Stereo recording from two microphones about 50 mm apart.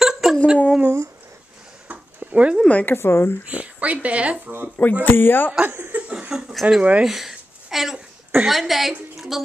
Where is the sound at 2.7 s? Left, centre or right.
Left.